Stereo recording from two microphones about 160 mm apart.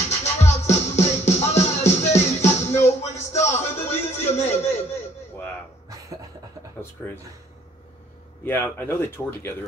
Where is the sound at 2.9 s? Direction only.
45° left (ahead or behind).